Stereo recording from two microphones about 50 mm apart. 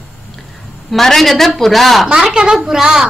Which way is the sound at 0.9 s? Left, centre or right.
Centre.